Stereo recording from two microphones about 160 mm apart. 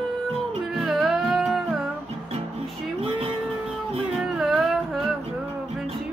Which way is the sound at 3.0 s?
40° right (ahead or behind).